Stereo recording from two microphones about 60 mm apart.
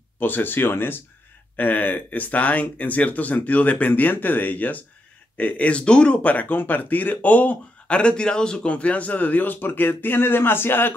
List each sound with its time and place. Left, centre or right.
0.2 s speech: left
8.0 s speech: centre; by 10.9 s left